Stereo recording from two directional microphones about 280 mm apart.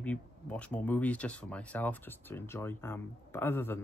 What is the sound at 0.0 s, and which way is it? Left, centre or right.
Speech, centre.